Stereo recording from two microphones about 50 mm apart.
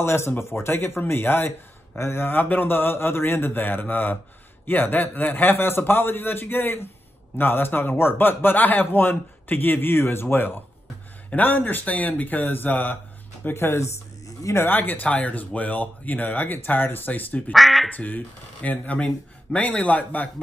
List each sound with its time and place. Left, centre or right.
0.0 s a man's voice: left
2.0 s a man's voice: left
2.3 s a man's voice: left
13.4 s speech: left
17.6 s speech: centre
17.8 s speech: left